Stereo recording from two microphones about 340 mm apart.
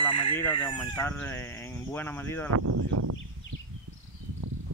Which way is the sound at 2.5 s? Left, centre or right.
Right.